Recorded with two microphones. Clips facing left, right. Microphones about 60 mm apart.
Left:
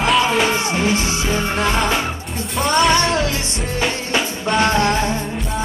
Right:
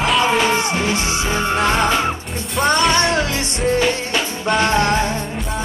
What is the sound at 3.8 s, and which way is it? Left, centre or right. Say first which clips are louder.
Music: right 2 dB; centre.